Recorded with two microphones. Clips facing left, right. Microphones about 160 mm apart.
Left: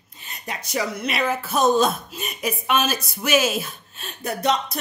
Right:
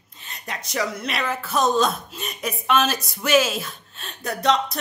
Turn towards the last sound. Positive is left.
turn(degrees=5)  # may be behind; listen again after turning